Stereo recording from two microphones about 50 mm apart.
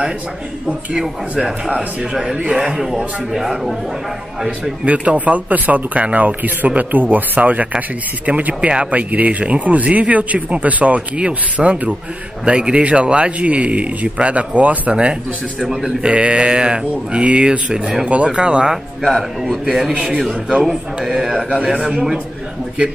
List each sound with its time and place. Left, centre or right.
1.3 s a man's voice: right; by 3.7 s centre
4.8 s speech: right
19.0 s a man's voice: centre